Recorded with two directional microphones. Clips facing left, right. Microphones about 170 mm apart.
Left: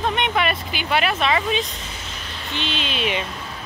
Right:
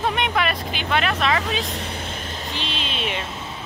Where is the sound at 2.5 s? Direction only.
35° right (ahead or behind).